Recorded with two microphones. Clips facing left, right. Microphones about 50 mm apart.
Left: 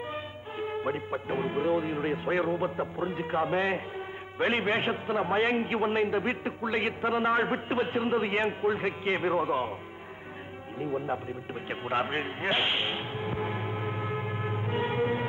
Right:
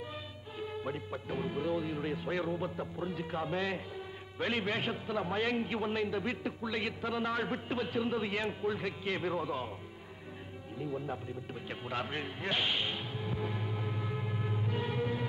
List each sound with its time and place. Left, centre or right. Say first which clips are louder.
0.1 s a man's voice: left 7 dB; left
10.8 s a man's voice: left 7 dB; left
11.7 s music: left 8 dB; left